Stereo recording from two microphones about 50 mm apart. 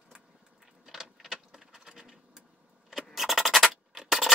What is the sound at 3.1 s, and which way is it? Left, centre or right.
Music, centre.